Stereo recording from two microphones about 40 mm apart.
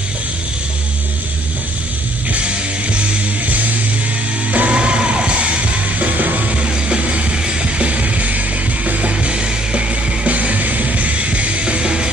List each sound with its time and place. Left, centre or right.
4.5 s music: right
5.9 s music: right
6.5 s music: right